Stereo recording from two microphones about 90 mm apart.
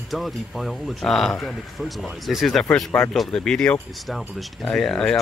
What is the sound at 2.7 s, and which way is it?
Speech, 15° left (ahead or behind).